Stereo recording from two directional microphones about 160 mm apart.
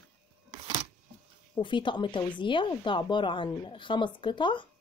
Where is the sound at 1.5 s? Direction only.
30° left (ahead or behind).